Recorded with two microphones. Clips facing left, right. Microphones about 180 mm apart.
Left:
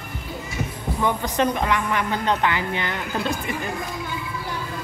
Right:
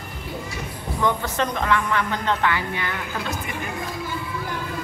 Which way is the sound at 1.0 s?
15° left (ahead or behind).